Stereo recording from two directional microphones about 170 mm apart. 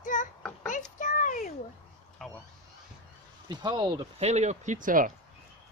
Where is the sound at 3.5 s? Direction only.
25° right (ahead or behind).